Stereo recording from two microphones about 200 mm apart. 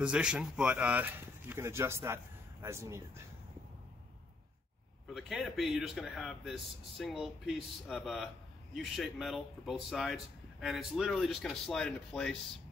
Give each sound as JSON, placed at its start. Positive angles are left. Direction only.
{"t": 0.0, "sound": "speech", "side_deg": -5}
{"t": 5.1, "sound": "speech", "side_deg": 0}